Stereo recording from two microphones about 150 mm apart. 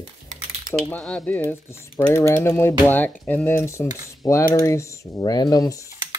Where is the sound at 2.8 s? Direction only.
10° left (ahead or behind).